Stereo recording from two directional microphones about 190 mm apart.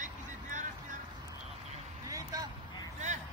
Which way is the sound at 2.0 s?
20° right (ahead or behind).